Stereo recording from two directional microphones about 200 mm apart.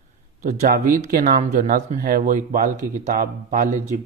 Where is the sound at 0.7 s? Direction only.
45° right (ahead or behind).